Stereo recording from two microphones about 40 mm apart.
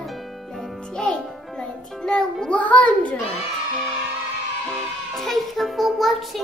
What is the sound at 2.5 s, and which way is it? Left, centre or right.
Music, left.